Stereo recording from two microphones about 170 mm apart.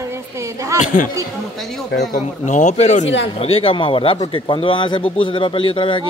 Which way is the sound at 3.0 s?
90° left.